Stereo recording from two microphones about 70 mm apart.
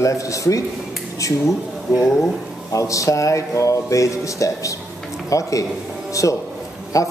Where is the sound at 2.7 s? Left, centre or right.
Left.